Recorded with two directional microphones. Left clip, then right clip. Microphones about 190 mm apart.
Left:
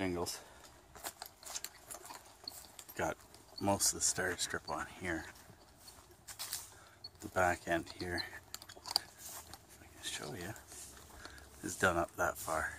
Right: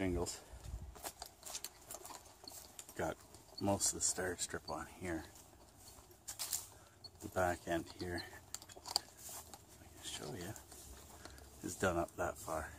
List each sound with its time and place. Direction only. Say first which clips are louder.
0.0 s a sound: left 2 dB; 10° left (ahead or behind)
3.6 s speech: left 3 dB; 10° left (ahead or behind)
6.3 s bird: even; 5° left (ahead or behind)
7.3 s chewing: left 4 dB; 15° left (ahead or behind)
10.0 s speech: left 4 dB; 15° left (ahead or behind)